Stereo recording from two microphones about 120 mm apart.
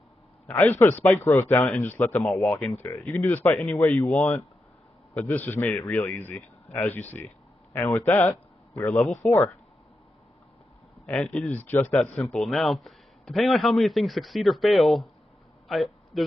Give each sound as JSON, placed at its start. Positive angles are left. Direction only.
{"t": 0.5, "sound": "a man's voice", "side_deg": 20}
{"t": 2.2, "sound": "a man's voice", "side_deg": 5}
{"t": 3.1, "sound": "a man's voice", "side_deg": 20}
{"t": 11.1, "sound": "a man's voice", "side_deg": 15}